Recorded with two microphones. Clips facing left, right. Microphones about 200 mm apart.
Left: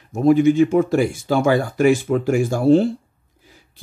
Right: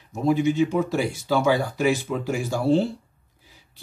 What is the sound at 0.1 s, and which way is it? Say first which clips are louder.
Speech: left 7 dB; 55° left (ahead or behind).